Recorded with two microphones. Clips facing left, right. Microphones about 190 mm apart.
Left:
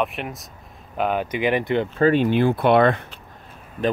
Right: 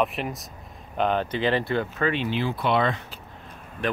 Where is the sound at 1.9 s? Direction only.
40° left (ahead or behind); by 3.0 s 55° left (ahead or behind).